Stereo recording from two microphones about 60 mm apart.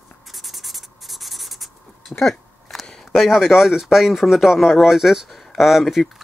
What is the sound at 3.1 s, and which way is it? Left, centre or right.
A man's voice, centre.